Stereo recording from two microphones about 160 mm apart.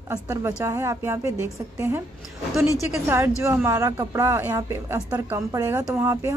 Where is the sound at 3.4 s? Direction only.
15° right (ahead or behind).